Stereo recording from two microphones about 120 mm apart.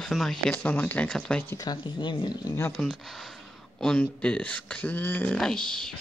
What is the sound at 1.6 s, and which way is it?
Speech, 35° left (ahead or behind).